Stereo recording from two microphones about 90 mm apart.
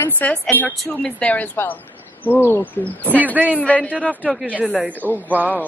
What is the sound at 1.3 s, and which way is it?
Speech, 20° left (ahead or behind).